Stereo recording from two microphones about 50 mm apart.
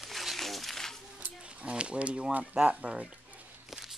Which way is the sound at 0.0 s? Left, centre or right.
Centre.